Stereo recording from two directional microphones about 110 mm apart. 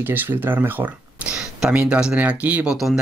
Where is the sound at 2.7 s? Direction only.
5° right (ahead or behind).